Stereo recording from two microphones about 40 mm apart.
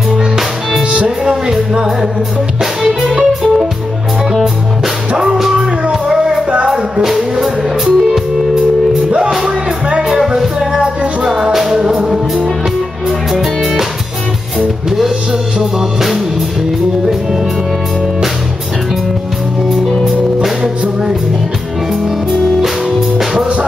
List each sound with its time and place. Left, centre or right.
0.2 s music: centre
0.9 s music: right
10.0 s music: centre
13.3 s music: centre
14.9 s music: centre
20.6 s music: centre
22.3 s music: centre